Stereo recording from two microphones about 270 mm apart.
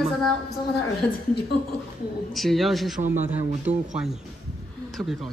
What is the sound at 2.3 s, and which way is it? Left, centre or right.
A man's voice, centre.